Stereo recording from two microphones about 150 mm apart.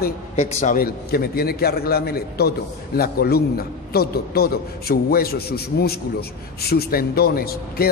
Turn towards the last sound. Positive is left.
turn(degrees=90)